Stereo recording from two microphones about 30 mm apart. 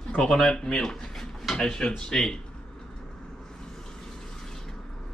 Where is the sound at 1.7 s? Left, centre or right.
Left.